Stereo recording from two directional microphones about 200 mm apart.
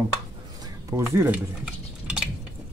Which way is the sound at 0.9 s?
10° right (ahead or behind).